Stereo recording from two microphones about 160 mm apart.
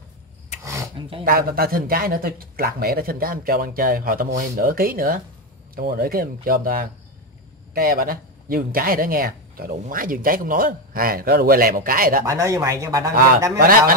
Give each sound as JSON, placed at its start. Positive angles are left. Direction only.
{"t": 1.2, "sound": "speech", "side_deg": -65}
{"t": 12.3, "sound": "speech", "side_deg": -20}
{"t": 13.1, "sound": "speech", "side_deg": -60}